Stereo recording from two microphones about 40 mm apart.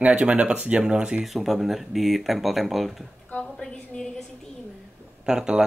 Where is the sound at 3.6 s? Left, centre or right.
Centre.